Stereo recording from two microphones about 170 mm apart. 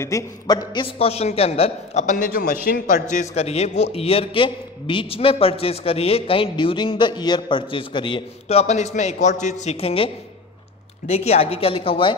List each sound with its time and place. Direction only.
0.0 s a man's voice: 20° left (ahead or behind)